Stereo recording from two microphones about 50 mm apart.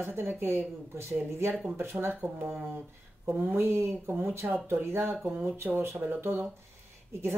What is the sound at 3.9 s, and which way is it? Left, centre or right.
Speech, right.